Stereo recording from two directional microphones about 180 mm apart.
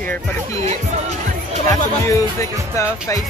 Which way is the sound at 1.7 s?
20° left (ahead or behind).